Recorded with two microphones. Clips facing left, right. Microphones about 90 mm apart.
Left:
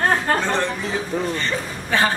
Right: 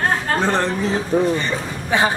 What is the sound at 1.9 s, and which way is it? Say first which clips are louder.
Speech: right 2 dB; 15° right (ahead or behind).